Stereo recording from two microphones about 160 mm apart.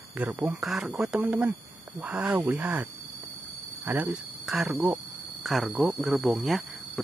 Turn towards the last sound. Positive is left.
turn(degrees=0)  # may be behind; listen again after turning